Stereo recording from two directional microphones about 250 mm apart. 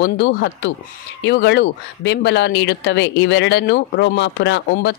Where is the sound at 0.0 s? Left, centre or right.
Left.